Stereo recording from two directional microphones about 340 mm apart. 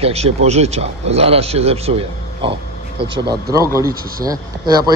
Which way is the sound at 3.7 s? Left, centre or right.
Centre.